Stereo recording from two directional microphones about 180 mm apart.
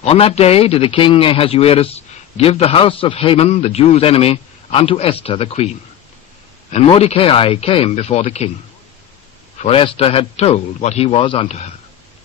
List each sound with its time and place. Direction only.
0.0 s speech: 35° left (ahead or behind)
9.6 s speech: 30° left (ahead or behind)